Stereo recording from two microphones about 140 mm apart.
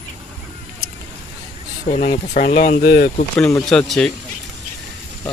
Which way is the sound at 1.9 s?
65° left (ahead or behind).